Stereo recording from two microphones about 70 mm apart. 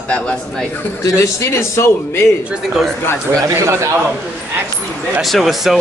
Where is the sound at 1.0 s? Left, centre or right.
Left.